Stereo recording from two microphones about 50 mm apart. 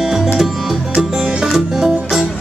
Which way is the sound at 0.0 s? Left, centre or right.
Centre.